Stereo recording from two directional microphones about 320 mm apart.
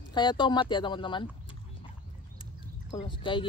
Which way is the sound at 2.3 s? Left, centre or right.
Centre.